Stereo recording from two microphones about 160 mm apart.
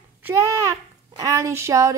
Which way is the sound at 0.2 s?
20° right (ahead or behind).